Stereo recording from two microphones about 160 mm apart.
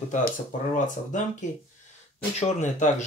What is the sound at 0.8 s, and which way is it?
Speech, 50° left (ahead or behind).